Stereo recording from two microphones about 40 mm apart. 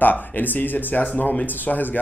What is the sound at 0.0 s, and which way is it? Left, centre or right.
Speech, left.